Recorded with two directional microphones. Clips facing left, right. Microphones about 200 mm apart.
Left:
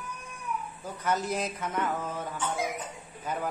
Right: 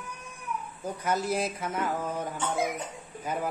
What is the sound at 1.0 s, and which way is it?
Speech, 10° right (ahead or behind).